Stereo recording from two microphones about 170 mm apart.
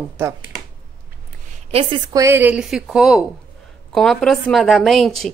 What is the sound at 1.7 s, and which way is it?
Speech, 35° right (ahead or behind).